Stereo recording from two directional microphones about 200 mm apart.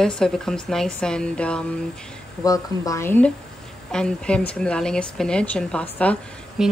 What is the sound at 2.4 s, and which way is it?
A woman's voice, 15° left (ahead or behind).